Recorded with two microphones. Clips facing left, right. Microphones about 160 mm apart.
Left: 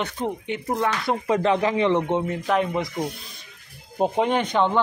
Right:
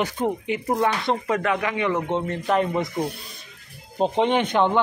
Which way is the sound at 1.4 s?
30° left (ahead or behind).